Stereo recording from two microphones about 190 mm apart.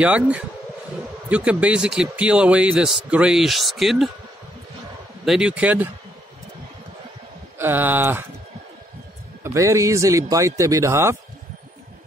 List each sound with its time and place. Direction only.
0.0 s a man's voice: 5° right (ahead or behind)
5.2 s speech: 5° right (ahead or behind)
7.5 s speech: 10° right (ahead or behind)
9.4 s speech: 15° right (ahead or behind)